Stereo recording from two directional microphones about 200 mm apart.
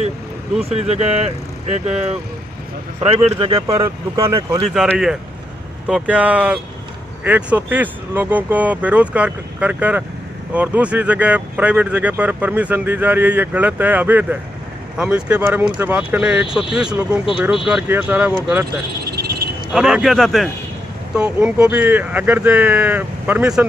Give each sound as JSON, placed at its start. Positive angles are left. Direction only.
{"t": 0.8, "sound": "speech", "side_deg": -30}
{"t": 3.6, "sound": "speech", "side_deg": -15}
{"t": 4.6, "sound": "speech", "side_deg": 0}
{"t": 19.7, "sound": "speech", "side_deg": -5}